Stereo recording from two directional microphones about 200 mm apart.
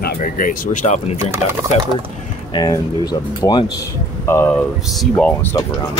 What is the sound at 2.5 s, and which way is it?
Speech, 20° left (ahead or behind).